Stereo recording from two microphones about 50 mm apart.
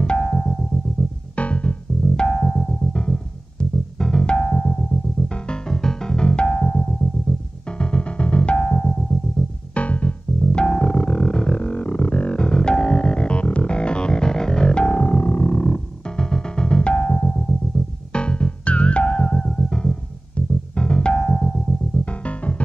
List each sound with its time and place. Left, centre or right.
0.0 s music: centre
0.3 s music: centre
1.3 s music: left
20.4 s music: left